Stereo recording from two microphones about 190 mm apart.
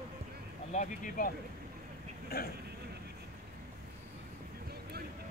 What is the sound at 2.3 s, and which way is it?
Speech, 55° left (ahead or behind).